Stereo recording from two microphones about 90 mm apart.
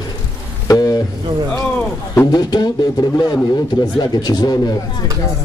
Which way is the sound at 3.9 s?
50° left (ahead or behind).